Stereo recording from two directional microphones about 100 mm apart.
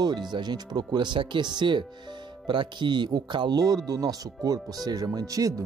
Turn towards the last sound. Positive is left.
turn(degrees=-35)  # may be behind; listen again after turning